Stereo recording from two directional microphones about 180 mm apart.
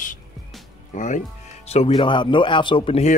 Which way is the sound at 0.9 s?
45° left (ahead or behind).